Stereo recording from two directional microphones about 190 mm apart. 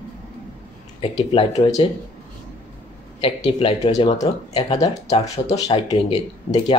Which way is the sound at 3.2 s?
25° left (ahead or behind).